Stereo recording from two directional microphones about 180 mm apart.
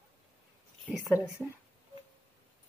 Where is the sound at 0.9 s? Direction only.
5° right (ahead or behind).